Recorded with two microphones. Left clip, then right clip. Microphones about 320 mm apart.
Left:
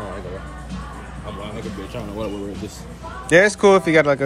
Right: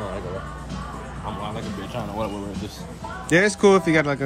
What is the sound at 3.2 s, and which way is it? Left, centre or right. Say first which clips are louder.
Speech: left 4 dB; centre.